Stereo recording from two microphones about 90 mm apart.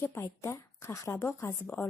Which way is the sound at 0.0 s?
30° left (ahead or behind).